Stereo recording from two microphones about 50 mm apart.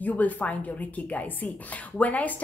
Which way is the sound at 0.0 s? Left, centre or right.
Left.